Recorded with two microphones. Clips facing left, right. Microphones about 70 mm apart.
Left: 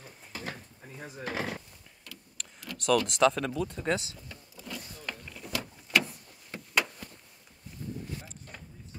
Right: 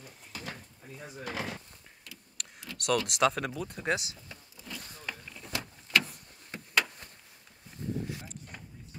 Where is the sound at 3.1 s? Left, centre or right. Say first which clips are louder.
Left 3 dB; centre.